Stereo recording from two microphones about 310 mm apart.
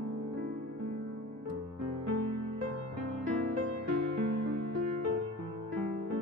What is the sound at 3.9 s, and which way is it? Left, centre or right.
Music, right.